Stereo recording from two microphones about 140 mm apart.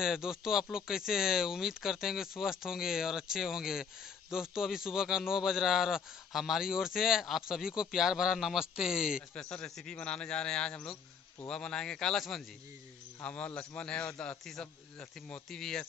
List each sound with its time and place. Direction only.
0.0 s a man's voice: 5° right (ahead or behind)
9.3 s a man's voice: 5° left (ahead or behind)